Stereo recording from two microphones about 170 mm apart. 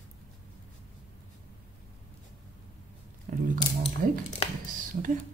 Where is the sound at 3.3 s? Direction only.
50° right (ahead or behind).